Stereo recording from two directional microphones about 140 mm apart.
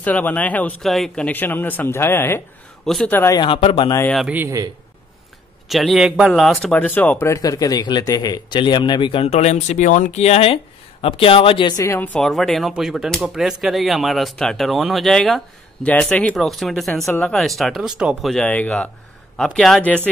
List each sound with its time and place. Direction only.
0.0 s speech: 10° left (ahead or behind)
3.3 s speech: 40° left (ahead or behind)
4.3 s a man's voice: 15° right (ahead or behind)
5.7 s speech: centre (ahead or behind); by 11.7 s 40° left (ahead or behind)
11.7 s speech: 20° left (ahead or behind)
12.0 s speech: 5° left (ahead or behind)
18.4 s speech: 10° left (ahead or behind)